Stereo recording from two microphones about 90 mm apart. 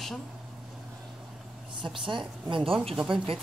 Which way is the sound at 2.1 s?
65° right (ahead or behind).